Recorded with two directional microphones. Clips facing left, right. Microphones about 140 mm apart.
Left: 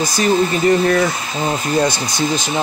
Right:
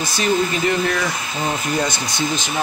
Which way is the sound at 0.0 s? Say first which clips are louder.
Left 4 dB; 35° left (ahead or behind).